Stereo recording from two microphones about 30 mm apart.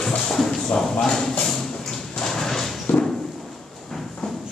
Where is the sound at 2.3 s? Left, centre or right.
Centre.